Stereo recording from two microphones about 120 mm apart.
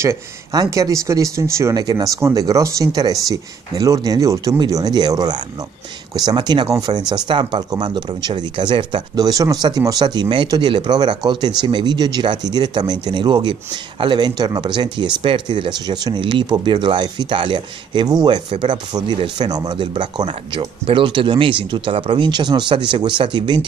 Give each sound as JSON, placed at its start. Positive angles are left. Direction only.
{"t": 0.0, "sound": "speech", "side_deg": -25}